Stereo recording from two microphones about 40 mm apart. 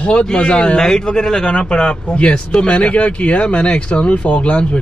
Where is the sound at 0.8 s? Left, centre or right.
Centre.